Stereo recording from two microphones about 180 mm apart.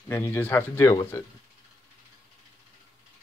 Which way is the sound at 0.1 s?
10° left (ahead or behind).